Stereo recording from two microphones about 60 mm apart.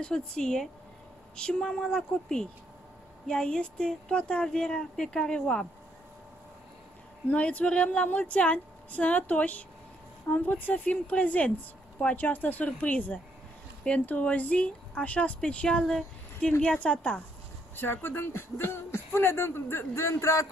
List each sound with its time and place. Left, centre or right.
0.0 s speech: centre
7.2 s a woman's voice: left
17.7 s speech: left